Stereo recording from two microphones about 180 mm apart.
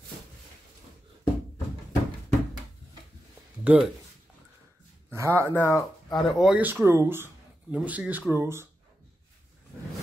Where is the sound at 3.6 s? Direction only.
5° right (ahead or behind).